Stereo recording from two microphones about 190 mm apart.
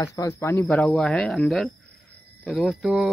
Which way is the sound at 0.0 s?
15° left (ahead or behind).